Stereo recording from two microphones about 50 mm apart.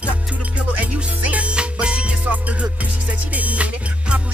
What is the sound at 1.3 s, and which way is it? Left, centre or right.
Music, right.